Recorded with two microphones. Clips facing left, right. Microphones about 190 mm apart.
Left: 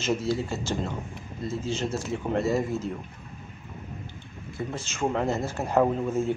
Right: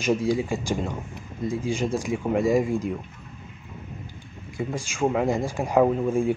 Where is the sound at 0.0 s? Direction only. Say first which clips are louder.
Right 4 dB; 15° right (ahead or behind).